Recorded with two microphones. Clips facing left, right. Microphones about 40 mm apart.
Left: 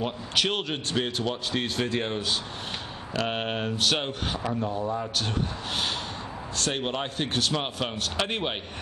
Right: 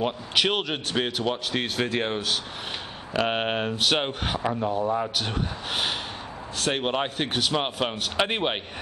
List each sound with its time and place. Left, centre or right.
0.0 s a man's voice: centre
6.6 s a man's voice: centre